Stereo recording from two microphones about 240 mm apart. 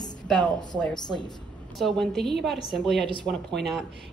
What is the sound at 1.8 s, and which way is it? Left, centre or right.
A woman's voice, centre.